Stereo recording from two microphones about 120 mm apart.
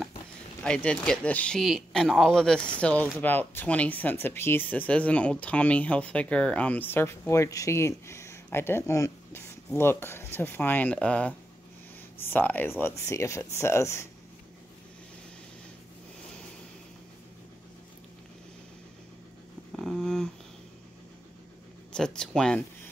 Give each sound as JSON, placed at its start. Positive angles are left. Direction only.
{"t": 0.7, "sound": "speech", "side_deg": 10}
{"t": 19.7, "sound": "a sound", "side_deg": 0}
{"t": 21.9, "sound": "speech", "side_deg": 5}